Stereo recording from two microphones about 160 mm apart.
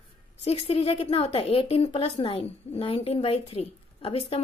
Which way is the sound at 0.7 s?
40° left (ahead or behind).